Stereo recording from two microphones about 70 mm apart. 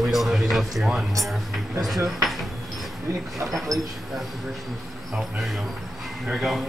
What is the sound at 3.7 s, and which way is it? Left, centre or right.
Speech, right.